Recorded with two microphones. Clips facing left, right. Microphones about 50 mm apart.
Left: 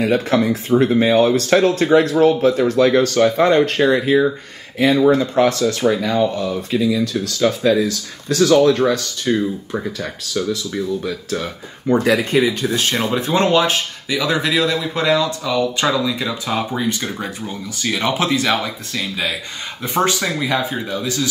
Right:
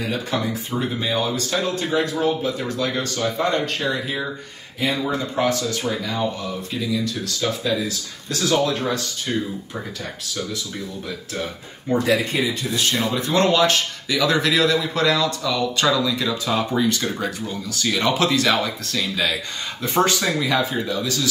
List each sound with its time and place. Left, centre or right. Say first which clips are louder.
0.0 s speech: left 8 dB; left
3.4 s speech: left 8 dB; left
6.7 s speech: left 11 dB; left
7.3 s speech: left 8 dB; left
8.6 s speech: left 8 dB; left
11.9 s speech: left 5 dB; left
12.7 s speech: left 3 dB; left
13.3 s speech: left 1 dB; left